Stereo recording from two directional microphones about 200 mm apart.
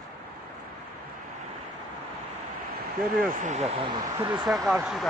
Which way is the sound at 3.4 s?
35° right (ahead or behind).